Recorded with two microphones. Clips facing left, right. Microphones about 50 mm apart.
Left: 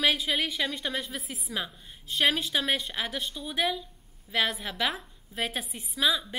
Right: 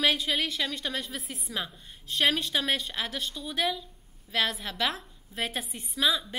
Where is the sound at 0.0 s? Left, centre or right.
Centre.